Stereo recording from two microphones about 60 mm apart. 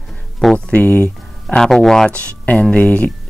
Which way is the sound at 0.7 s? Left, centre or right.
Left.